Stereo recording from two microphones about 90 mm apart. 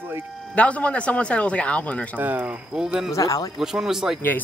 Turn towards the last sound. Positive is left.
turn(degrees=20)  # may be behind; listen again after turning